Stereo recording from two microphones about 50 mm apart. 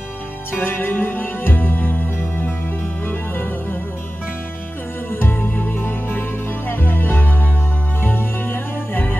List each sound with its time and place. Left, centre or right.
0.5 s music: left
5.1 s music: left